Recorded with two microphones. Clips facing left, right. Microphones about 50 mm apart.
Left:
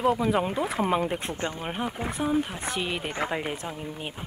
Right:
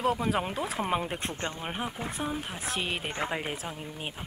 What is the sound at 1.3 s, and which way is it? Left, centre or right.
Speech, centre.